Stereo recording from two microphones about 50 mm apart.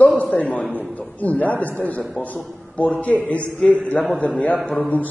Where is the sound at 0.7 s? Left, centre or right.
Left.